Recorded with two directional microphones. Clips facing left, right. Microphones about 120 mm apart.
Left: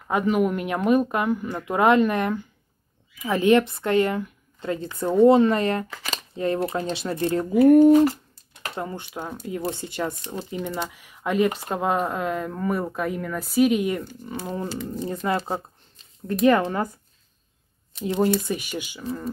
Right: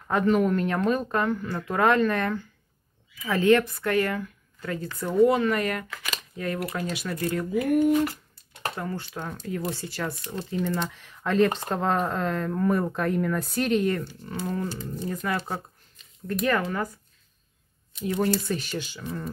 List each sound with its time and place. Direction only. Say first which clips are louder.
0.1 s speech: even; 10° left (ahead or behind); by 8.2 s 35° left (ahead or behind)
8.7 s speech: left 6 dB; 20° left (ahead or behind)
18.0 s speech: left 3 dB; 25° left (ahead or behind)
18.5 s speech: left 1 dB; 10° left (ahead or behind)